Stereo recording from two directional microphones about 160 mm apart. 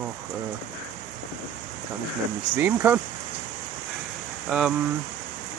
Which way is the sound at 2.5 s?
15° right (ahead or behind).